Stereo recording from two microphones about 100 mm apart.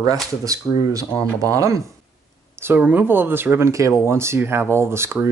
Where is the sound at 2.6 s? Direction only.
20° right (ahead or behind).